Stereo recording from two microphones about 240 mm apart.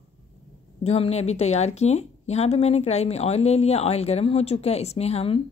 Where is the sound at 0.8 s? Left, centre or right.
Left.